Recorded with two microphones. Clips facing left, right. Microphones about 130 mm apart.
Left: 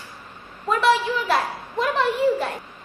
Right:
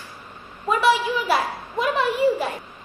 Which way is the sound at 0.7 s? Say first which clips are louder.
Even; 10° right (ahead or behind).